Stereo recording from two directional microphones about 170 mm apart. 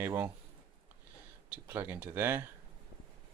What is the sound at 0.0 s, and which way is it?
Speech, 15° right (ahead or behind).